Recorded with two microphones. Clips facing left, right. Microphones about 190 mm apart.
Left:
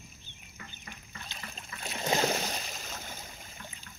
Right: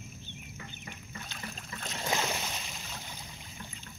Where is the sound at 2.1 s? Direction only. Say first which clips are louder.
Left 5 dB; 40° left (ahead or behind).